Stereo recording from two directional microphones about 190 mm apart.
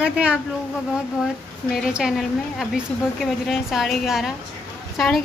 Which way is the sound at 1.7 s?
5° right (ahead or behind).